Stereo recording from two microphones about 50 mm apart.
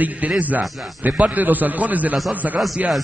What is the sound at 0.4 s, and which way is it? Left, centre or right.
A man's voice, right.